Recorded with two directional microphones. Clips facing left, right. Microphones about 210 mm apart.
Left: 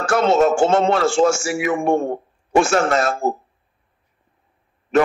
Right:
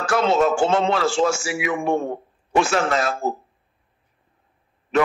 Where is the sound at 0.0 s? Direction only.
50° left (ahead or behind).